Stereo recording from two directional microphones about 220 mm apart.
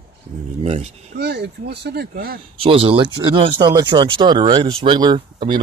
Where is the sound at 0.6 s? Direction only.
30° right (ahead or behind).